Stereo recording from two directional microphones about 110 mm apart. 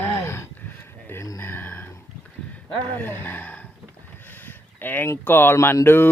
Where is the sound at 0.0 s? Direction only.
25° left (ahead or behind).